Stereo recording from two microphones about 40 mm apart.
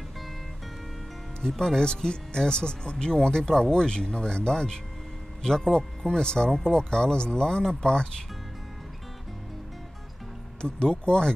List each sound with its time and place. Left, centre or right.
1.6 s speech: centre
10.6 s speech: left